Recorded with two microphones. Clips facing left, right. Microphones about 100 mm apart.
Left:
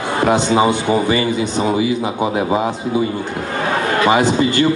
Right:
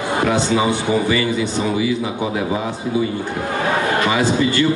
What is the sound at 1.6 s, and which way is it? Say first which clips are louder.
Speech: left 4 dB; 35° left (ahead or behind).